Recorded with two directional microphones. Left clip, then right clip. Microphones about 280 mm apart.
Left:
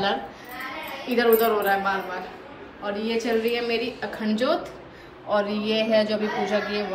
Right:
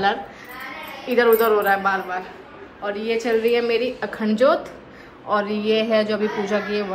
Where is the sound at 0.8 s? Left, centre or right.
Centre.